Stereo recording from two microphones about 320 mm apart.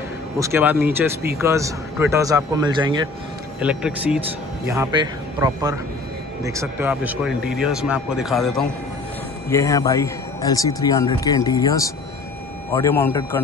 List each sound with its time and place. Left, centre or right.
0.4 s a man's voice: centre
3.6 s a man's voice: centre